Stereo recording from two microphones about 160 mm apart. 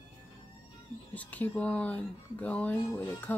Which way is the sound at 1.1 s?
10° left (ahead or behind).